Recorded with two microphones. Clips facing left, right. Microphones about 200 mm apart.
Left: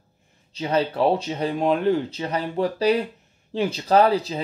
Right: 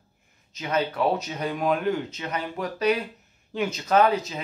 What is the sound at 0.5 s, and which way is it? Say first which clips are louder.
A man's voice: left 4 dB; 30° left (ahead or behind).